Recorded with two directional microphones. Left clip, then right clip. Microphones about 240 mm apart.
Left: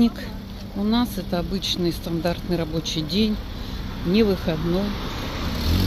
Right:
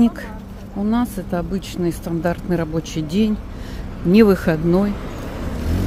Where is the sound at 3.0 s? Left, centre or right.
Right.